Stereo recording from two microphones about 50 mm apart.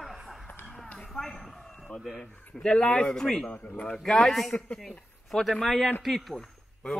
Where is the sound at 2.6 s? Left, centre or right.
Centre.